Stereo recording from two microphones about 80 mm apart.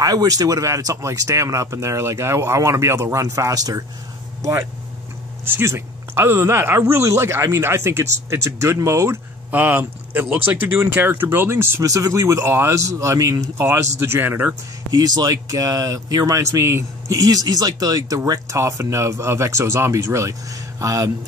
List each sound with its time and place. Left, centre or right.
0.0 s speech: right
5.4 s speech: right
9.5 s speech: right
11.8 s speech: right
14.9 s speech: right
16.3 s speech: right
17.2 s speech: right
18.6 s speech: right